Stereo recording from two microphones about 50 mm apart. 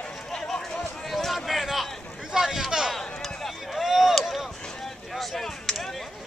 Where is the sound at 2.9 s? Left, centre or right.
Centre.